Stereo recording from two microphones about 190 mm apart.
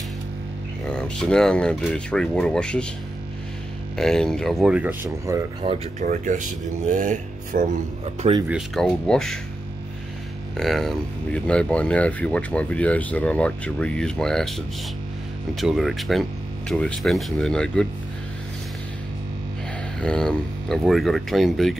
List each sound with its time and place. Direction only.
0.8 s speech: 5° left (ahead or behind)
3.9 s speech: 5° left (ahead or behind); by 5.8 s 25° right (ahead or behind)
5.9 s speech: 40° right (ahead or behind)
8.5 s speech: centre (ahead or behind)
10.6 s speech: centre (ahead or behind)
15.5 s speech: centre (ahead or behind)
20.0 s speech: 5° left (ahead or behind)